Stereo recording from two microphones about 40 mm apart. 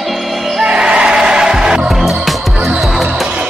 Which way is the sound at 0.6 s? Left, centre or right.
Right.